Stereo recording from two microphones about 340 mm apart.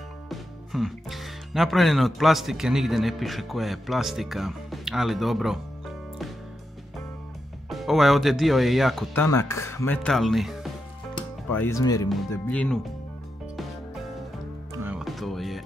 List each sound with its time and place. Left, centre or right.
0.3 s speech: centre
7.7 s speech: centre
14.8 s music: centre